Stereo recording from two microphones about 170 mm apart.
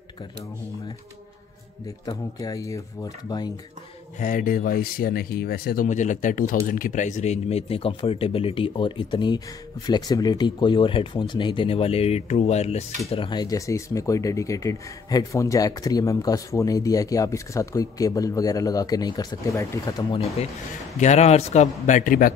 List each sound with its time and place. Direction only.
2.0 s speech: 20° left (ahead or behind)
4.2 s speech: 50° left (ahead or behind)
13.1 s speech: 30° left (ahead or behind)
20.1 s speech: 35° left (ahead or behind); by 22.3 s 50° left (ahead or behind)